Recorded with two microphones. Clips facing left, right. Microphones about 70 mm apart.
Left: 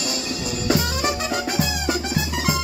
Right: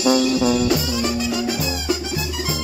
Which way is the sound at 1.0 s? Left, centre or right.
Left.